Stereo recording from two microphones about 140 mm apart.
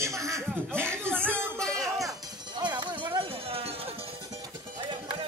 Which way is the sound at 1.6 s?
5° left (ahead or behind).